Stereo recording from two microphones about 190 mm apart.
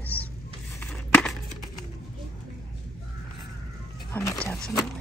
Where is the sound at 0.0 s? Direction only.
10° left (ahead or behind).